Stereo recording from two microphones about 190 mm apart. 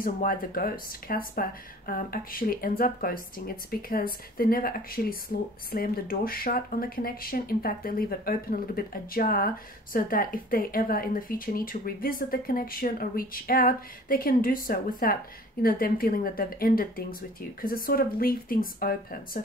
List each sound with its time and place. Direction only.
0.0 s speech: 45° left (ahead or behind)